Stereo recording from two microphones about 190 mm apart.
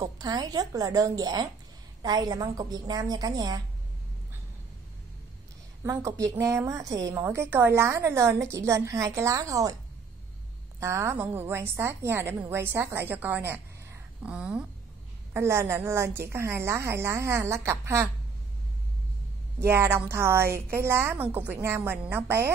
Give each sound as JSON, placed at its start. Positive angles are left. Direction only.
{"t": 0.0, "sound": "a woman's voice", "side_deg": -20}
{"t": 5.9, "sound": "a woman's voice", "side_deg": -15}
{"t": 10.8, "sound": "a woman's voice", "side_deg": -15}
{"t": 19.6, "sound": "a woman's voice", "side_deg": -15}